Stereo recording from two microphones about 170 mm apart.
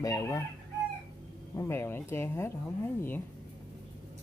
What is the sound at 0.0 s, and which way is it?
Speech, 20° left (ahead or behind).